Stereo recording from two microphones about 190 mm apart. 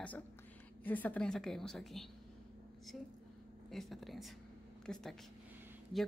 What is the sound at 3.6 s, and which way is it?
A woman's voice, centre (ahead or behind).